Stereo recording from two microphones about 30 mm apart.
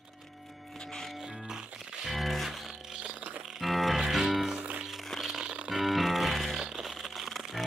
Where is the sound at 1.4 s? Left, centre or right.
Centre.